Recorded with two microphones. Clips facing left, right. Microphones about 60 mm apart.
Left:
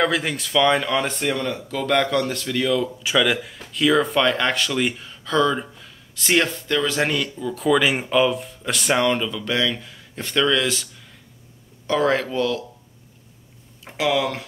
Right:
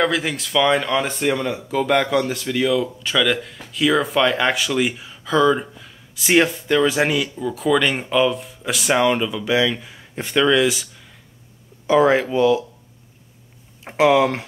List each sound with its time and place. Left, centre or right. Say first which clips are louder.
0.0 s speech: right 1 dB; centre
11.9 s speech: right 5 dB; centre
13.8 s speech: right 6 dB; right